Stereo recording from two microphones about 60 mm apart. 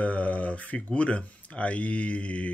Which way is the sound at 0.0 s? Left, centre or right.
Left.